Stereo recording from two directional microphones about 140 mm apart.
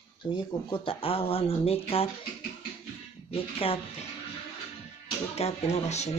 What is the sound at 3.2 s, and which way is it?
Speech, 45° left (ahead or behind).